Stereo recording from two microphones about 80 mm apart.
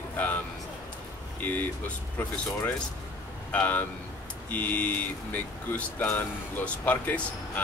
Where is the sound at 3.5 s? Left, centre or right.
Centre.